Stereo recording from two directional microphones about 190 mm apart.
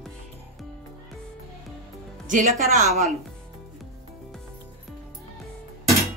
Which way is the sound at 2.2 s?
45° right (ahead or behind).